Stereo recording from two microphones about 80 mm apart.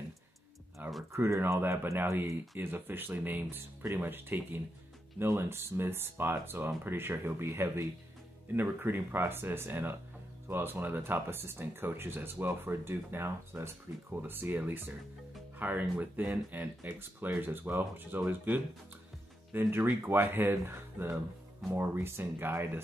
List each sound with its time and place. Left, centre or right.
0.8 s a sound: right
1.1 s speech: right
1.6 s speech: right
2.0 s speech: right
2.6 s speech: right